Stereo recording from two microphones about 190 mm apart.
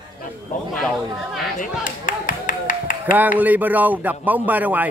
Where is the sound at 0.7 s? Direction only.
Centre (ahead or behind).